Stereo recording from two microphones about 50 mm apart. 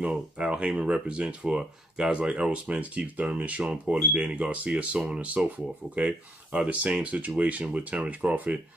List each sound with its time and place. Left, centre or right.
0.0 s speech: centre